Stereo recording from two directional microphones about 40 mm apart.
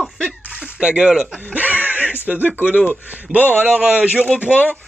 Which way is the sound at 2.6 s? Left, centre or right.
Left.